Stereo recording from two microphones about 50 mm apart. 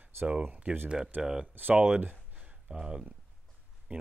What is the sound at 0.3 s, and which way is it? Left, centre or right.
Speech, right.